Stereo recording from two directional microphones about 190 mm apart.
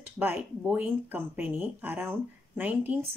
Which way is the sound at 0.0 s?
10° right (ahead or behind).